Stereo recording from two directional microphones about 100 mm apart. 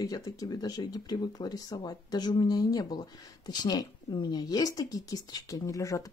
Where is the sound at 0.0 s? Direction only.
40° left (ahead or behind).